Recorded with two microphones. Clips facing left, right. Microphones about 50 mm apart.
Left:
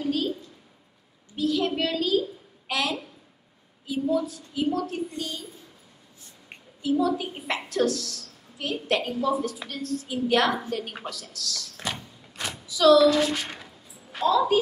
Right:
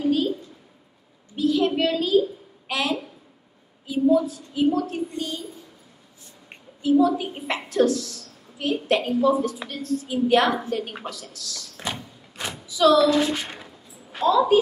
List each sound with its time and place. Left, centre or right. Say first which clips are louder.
0.0 s a sound: right 5 dB; centre
1.3 s a sound: right 4 dB; centre
1.8 s a child's voice: right 4 dB; right
6.8 s a woman's voice: right 5 dB; right
11.1 s door: even; right
13.1 s a woman's voice: right 2 dB; right